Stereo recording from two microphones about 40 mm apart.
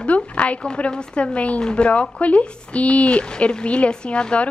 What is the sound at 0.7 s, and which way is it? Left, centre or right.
Speech, left.